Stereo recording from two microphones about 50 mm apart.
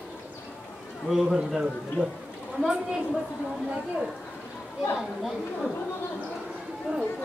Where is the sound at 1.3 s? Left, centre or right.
Centre.